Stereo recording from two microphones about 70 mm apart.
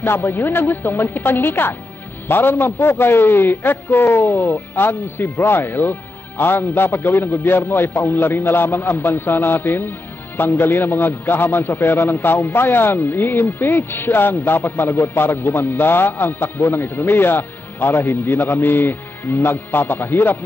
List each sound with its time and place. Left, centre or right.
0.4 s speech: left
0.7 s a man's voice: left
4.9 s speech: left
5.4 s a man's voice: left